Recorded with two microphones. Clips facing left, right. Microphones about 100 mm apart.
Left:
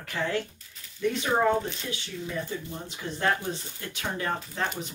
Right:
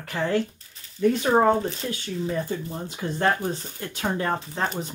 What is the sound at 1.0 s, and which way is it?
Speech, 45° right (ahead or behind).